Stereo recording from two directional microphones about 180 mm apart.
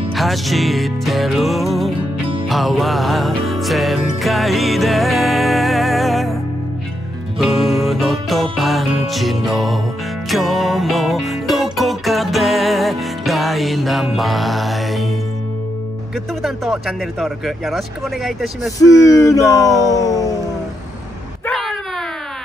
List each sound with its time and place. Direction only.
0.1 s speech: centre (ahead or behind)
2.4 s music: centre (ahead or behind)
7.3 s music: centre (ahead or behind)
16.4 s speech: centre (ahead or behind)
18.8 s speech: 20° left (ahead or behind)
19.9 s a sound: 20° left (ahead or behind)
21.5 s a sound: centre (ahead or behind)